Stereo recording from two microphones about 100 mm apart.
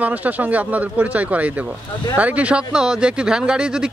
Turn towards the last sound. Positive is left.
turn(degrees=-10)  # may be behind; listen again after turning